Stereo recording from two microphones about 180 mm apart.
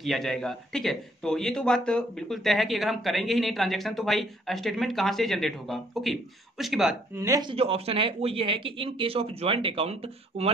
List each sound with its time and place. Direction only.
0.0 s a man's voice: centre (ahead or behind)
7.2 s speech: 20° right (ahead or behind)
7.5 s speech: 35° right (ahead or behind)